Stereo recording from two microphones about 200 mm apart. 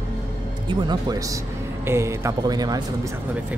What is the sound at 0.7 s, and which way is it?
Speech, 20° right (ahead or behind).